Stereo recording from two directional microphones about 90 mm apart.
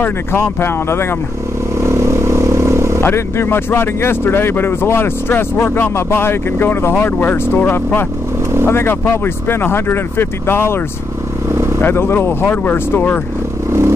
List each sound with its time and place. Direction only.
0.0 s speech: 25° left (ahead or behind)
1.8 s vehicle: 30° right (ahead or behind)
3.0 s speech: 25° left (ahead or behind)
11.8 s speech: 25° left (ahead or behind)
13.7 s vehicle: 30° right (ahead or behind)